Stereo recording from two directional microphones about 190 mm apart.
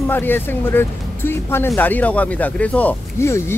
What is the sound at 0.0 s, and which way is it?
Speech, 10° left (ahead or behind).